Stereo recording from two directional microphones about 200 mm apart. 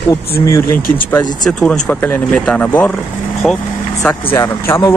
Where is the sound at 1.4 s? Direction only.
5° left (ahead or behind).